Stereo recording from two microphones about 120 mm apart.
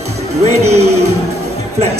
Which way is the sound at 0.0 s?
60° right (ahead or behind).